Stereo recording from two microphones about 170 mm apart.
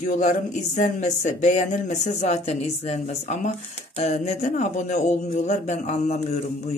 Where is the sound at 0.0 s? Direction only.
45° left (ahead or behind).